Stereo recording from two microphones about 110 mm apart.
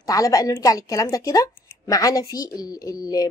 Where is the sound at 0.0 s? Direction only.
30° left (ahead or behind).